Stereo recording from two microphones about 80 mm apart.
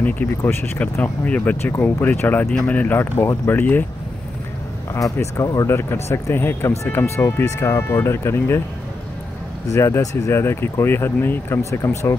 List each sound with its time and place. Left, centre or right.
0.4 s speech: left
4.9 s speech: left
5.7 s speech: left
9.7 s speech: left